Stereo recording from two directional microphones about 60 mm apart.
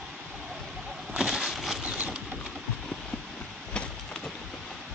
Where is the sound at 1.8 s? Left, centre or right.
Centre.